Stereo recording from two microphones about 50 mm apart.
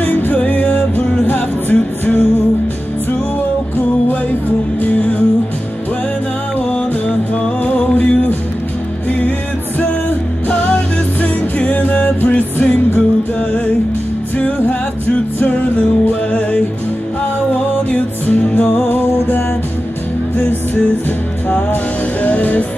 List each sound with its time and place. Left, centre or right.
0.0 s music: left
3.7 s music: left
7.6 s music: left
10.5 s music: left
11.2 s music: left
15.8 s music: left
17.9 s music: left
22.2 s music: left